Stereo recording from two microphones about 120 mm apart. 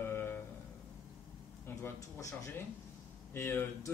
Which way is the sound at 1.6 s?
25° left (ahead or behind).